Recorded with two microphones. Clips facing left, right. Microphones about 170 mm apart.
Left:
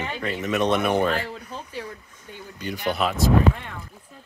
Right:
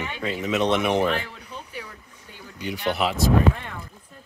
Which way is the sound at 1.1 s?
30° left (ahead or behind).